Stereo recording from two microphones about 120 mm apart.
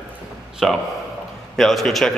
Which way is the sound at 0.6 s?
Centre (ahead or behind).